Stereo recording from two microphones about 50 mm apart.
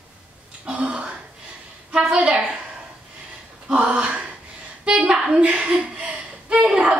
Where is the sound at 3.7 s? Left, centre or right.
Right.